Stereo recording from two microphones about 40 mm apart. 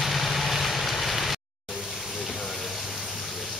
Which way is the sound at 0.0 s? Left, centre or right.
Centre.